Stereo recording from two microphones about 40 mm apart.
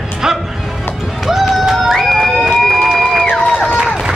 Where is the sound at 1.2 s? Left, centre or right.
Centre.